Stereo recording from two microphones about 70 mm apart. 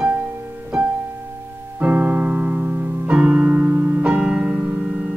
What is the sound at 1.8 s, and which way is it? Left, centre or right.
Keyboard, right.